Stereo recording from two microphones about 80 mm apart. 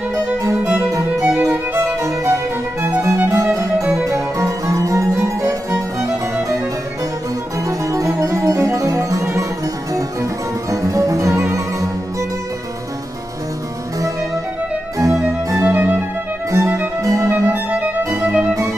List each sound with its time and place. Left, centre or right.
0.1 s music: right
7.6 s music: right
10.7 s music: right
15.0 s harpsichord: right
15.6 s music: right
16.4 s music: right
17.3 s music: right